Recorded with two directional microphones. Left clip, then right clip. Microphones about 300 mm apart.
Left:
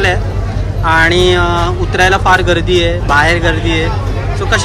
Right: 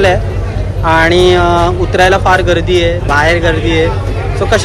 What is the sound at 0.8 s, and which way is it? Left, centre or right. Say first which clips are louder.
Speech: right 1 dB; centre.